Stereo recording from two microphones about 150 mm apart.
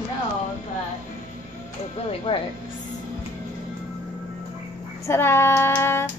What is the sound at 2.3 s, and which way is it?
Speech, 30° left (ahead or behind).